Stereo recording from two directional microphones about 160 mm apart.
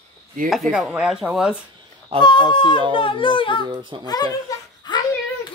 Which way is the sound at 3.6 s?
30° right (ahead or behind).